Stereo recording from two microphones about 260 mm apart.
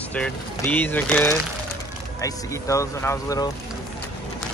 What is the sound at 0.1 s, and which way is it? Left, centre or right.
Speech, centre.